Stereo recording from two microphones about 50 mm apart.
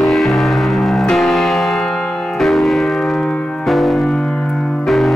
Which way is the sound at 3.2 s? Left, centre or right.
Centre.